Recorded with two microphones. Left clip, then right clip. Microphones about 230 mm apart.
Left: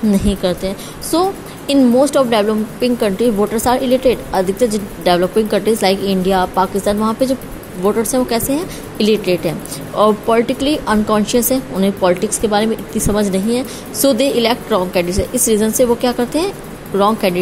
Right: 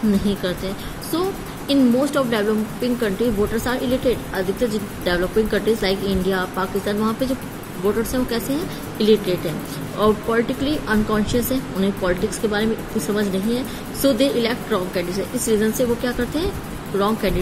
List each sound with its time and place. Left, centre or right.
0.2 s a woman's voice: left